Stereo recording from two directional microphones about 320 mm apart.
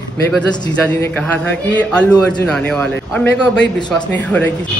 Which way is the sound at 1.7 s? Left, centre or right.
Centre.